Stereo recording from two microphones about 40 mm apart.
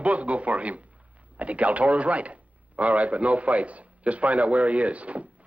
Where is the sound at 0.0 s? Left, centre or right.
Right.